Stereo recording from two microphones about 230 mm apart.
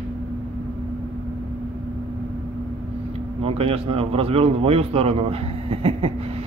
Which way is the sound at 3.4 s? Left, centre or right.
Right.